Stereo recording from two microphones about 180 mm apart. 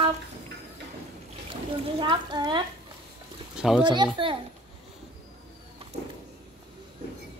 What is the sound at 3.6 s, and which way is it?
Speech, 5° right (ahead or behind).